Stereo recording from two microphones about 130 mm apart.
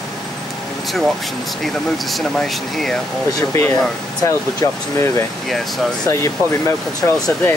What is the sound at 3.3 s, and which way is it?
Speech, 20° left (ahead or behind).